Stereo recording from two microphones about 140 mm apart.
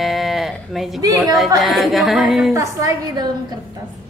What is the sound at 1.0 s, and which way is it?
Speech, 25° right (ahead or behind).